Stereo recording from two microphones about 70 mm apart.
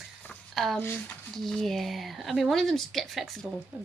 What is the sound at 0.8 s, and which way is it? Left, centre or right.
Speech, left.